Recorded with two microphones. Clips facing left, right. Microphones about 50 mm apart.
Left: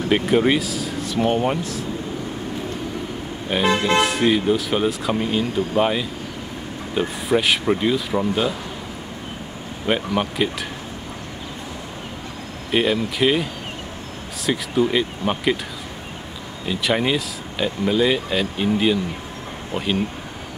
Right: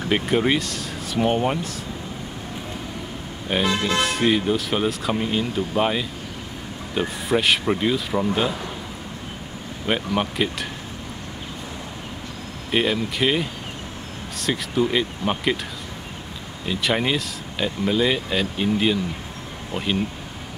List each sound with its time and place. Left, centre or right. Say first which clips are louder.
0.1 s speech: left 3 dB; centre
3.6 s speech: left 6 dB; centre
4.0 s speech: left 2 dB; centre
9.8 s speech: left 2 dB; centre
12.7 s speech: left 2 dB; centre
16.6 s speech: left 2 dB; centre